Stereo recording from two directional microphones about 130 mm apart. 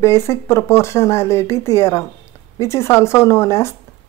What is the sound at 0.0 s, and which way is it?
Speech, 20° left (ahead or behind).